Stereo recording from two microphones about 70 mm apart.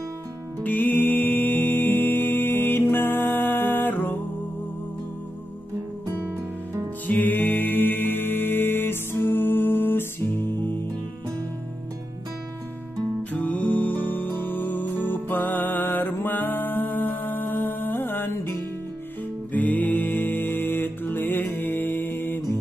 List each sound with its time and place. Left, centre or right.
0.7 s music: left
7.1 s music: left
13.3 s music: left